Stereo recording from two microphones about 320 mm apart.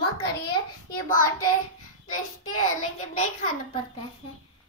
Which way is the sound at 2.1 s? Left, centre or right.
Left.